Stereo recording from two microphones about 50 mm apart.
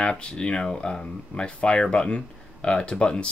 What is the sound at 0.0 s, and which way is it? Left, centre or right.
Speech, centre.